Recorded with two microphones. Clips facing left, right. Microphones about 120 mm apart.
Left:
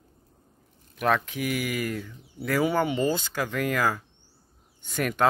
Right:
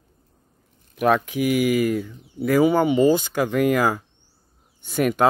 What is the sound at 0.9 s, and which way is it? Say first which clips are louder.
Speech: right 6 dB; 10° right (ahead or behind).